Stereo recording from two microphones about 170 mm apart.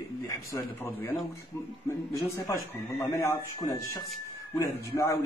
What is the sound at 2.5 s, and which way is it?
A man's voice, 15° left (ahead or behind).